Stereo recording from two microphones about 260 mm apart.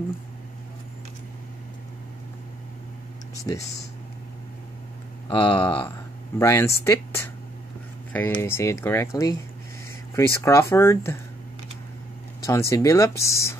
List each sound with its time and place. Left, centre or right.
3.3 s speech: centre
5.3 s speech: centre
12.4 s speech: centre